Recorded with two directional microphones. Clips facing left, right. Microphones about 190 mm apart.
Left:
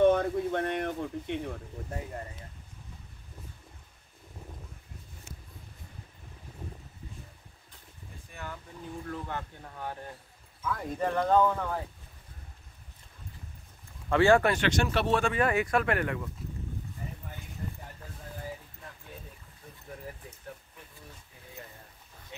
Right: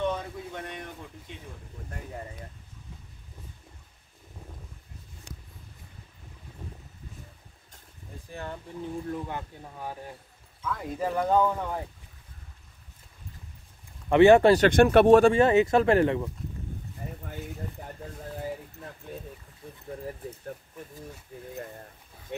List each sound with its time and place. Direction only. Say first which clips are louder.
0.0 s a sound: left 8 dB; 55° left (ahead or behind)
8.3 s a sound: right 5 dB; 30° right (ahead or behind)
9.0 s speech: right 3 dB; 15° right (ahead or behind)
10.6 s speech: even; centre (ahead or behind); by 11.8 s 15° right (ahead or behind)
14.0 s speech: right 6 dB; 20° right (ahead or behind)
14.7 s speech: right 10 dB; 55° right (ahead or behind)
15.3 s speech: right 7 dB; 25° right (ahead or behind)
21.3 s speech: right 13 dB; 50° right (ahead or behind)